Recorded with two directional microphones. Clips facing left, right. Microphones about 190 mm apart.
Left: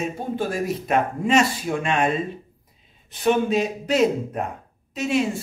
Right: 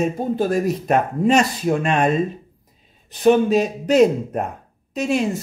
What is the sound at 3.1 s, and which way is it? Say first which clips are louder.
Speech: right 5 dB; 40° right (ahead or behind).